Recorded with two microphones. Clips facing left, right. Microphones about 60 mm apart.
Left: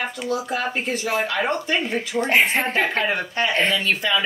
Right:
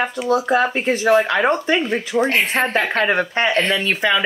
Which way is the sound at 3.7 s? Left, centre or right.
Right.